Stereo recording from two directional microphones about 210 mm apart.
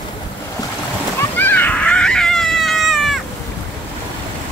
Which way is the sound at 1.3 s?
10° left (ahead or behind).